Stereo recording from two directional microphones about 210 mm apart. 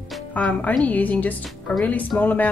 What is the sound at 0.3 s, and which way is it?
Speech, 5° left (ahead or behind).